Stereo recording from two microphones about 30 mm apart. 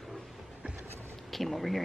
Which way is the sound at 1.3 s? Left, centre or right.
Centre.